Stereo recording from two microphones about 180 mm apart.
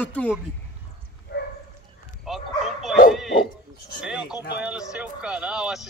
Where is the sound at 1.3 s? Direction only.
70° left (ahead or behind).